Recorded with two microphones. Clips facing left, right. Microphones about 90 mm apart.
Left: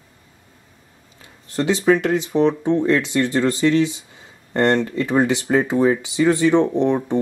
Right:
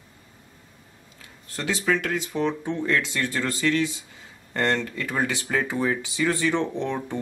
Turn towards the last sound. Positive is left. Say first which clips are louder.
# left 10 dB
turn(degrees=20)  # may be behind; listen again after turning